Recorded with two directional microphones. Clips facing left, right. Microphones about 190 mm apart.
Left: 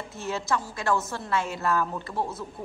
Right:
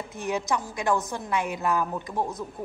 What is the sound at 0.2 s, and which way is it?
A woman's voice, 15° right (ahead or behind).